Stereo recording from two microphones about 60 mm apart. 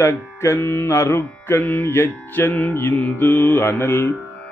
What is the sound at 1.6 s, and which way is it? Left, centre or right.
Mantra, left.